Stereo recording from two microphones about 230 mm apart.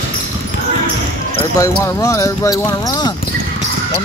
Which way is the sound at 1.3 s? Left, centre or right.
Centre.